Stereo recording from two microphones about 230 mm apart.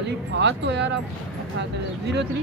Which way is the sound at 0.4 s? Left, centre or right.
Right.